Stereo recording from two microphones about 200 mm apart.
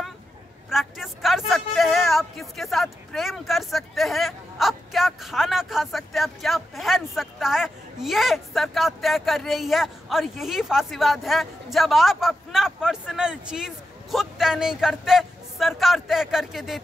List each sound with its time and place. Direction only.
0.7 s a man's voice: centre (ahead or behind)